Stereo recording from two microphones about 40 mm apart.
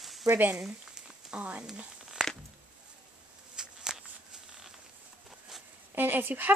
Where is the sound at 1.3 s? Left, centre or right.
Right.